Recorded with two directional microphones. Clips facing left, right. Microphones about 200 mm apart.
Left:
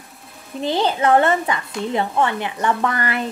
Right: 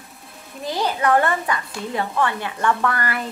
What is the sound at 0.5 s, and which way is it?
Speech, 25° left (ahead or behind).